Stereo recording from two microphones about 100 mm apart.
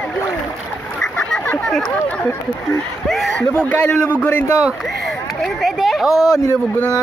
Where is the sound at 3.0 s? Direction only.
Centre (ahead or behind).